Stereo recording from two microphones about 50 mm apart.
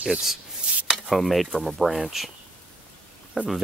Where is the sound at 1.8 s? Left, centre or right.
Centre.